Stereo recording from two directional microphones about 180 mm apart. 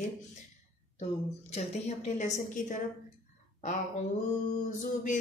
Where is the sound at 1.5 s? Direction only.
35° left (ahead or behind).